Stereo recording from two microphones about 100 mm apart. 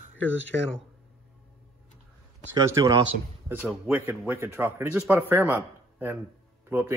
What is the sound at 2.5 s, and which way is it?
Speech, 40° right (ahead or behind).